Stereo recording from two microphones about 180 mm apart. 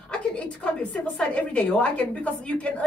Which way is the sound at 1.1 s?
5° left (ahead or behind).